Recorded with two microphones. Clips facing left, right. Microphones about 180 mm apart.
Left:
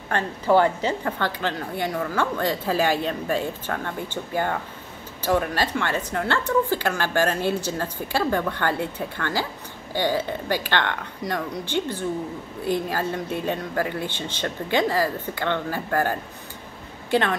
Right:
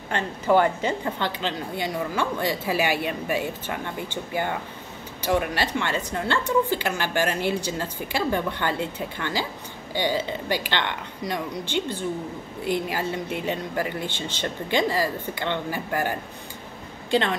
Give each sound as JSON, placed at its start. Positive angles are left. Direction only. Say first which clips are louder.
{"t": 0.1, "sound": "a woman's voice", "louder": "left 1 dB", "side_deg": -15}
{"t": 5.3, "sound": "a woman's voice", "louder": "left 1 dB", "side_deg": -15}
{"t": 14.0, "sound": "speech", "louder": "left 1 dB", "side_deg": 10}
{"t": 14.4, "sound": "a woman's voice", "louder": "left 1 dB", "side_deg": -15}